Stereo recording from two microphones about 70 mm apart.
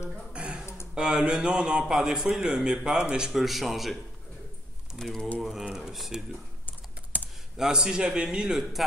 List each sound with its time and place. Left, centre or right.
0.3 s a sound: centre
0.9 s a man's voice: centre
6.6 s typing: left
7.5 s a man's voice: centre